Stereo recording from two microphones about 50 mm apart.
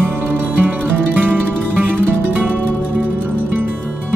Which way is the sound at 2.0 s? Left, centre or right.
Right.